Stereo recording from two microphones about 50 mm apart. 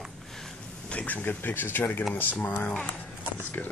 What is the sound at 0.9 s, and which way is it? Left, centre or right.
Speech, left.